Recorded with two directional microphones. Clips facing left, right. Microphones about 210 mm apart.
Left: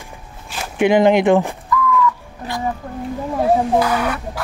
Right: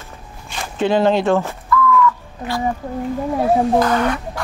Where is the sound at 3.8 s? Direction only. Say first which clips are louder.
Right 2 dB; 10° left (ahead or behind).